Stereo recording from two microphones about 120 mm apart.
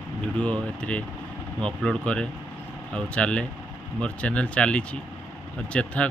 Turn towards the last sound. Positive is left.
turn(degrees=10)  # may be behind; listen again after turning